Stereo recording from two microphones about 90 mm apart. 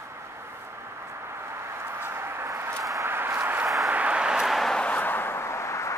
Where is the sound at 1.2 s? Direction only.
30° right (ahead or behind).